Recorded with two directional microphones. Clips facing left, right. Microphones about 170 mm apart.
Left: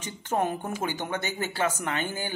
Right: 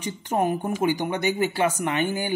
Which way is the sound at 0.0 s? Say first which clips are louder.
Right 3 dB; 15° right (ahead or behind).